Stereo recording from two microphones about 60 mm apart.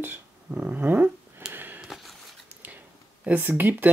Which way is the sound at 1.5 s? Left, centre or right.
Right.